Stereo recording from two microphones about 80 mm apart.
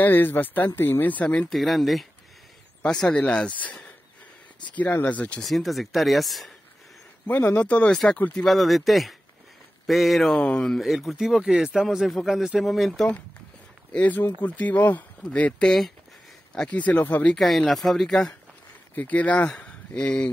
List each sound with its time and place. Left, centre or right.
0.0 s speech: left
1.5 s speech: centre
2.8 s speech: centre
5.4 s speech: centre
7.2 s speech: left
8.5 s speech: centre
10.3 s speech: centre
13.9 s speech: left
17.4 s speech: centre
18.9 s speech: centre